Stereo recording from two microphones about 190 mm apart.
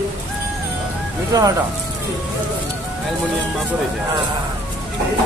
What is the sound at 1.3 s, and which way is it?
Speech, 20° right (ahead or behind).